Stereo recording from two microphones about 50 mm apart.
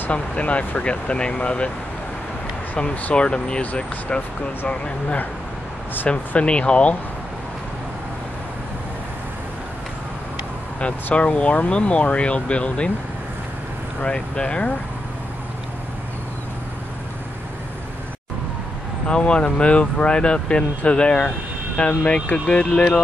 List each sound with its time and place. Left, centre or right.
0.1 s speech: left
2.8 s speech: left
11.1 s speech: left
14.0 s speech: left
19.0 s speech: centre